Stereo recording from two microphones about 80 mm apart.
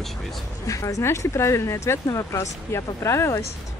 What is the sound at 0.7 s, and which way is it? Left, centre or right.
Speech, left.